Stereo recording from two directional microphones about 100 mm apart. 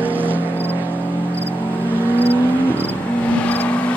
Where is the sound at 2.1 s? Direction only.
15° left (ahead or behind).